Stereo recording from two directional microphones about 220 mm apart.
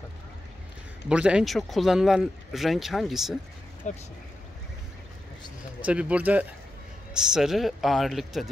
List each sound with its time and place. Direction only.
1.0 s speech: 5° right (ahead or behind)
3.9 s speech: 35° left (ahead or behind)
5.9 s speech: 5° right (ahead or behind)